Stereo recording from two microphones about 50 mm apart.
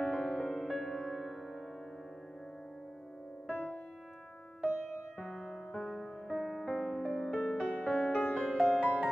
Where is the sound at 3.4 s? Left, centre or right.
Left.